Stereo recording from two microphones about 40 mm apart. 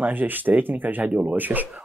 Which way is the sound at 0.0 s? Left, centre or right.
Right.